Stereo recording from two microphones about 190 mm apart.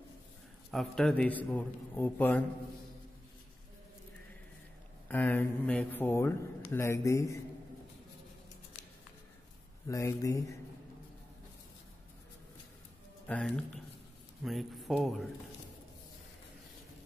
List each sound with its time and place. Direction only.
0.7 s speech: centre (ahead or behind)
5.0 s speech: 10° left (ahead or behind)
9.8 s speech: 15° left (ahead or behind)
13.3 s speech: 5° left (ahead or behind)